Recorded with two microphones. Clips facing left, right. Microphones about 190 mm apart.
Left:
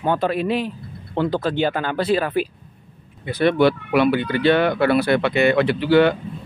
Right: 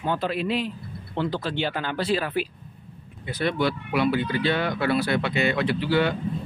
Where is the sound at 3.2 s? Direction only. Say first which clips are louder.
Left 8 dB; 65° left (ahead or behind).